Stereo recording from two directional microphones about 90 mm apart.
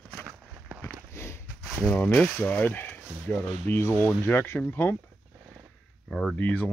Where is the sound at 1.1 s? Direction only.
30° left (ahead or behind).